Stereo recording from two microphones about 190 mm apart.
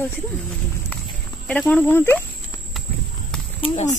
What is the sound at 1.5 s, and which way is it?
Speech, 5° left (ahead or behind).